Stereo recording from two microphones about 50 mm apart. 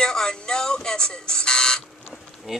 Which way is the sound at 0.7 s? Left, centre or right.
Centre.